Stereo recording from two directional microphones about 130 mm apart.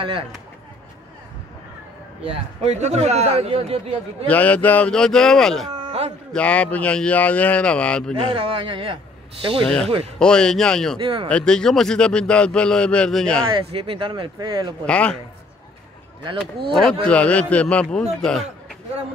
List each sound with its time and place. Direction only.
2.2 s a man's voice: 55° right (ahead or behind)
4.3 s speech: 10° left (ahead or behind)
5.9 s a sound: 50° right (ahead or behind)
6.3 s a man's voice: 10° left (ahead or behind)
8.1 s a man's voice: 45° right (ahead or behind)
10.1 s speech: 5° left (ahead or behind)
11.0 s a man's voice: 45° right (ahead or behind)
11.2 s a man's voice: 5° left (ahead or behind)
13.5 s speech: 45° right (ahead or behind)
14.9 s a man's voice: 10° left (ahead or behind)
17.0 s a man's voice: 10° left (ahead or behind)